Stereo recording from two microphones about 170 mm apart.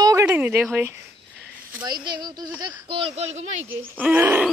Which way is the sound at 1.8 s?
25° right (ahead or behind).